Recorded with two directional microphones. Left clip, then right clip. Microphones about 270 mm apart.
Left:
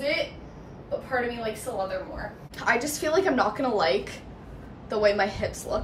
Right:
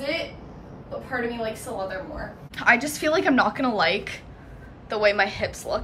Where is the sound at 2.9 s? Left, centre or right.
Centre.